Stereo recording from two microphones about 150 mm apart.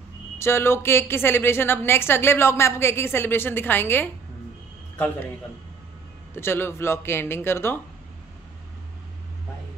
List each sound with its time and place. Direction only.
0.4 s a woman's voice: 15° left (ahead or behind)
6.3 s a woman's voice: 15° left (ahead or behind)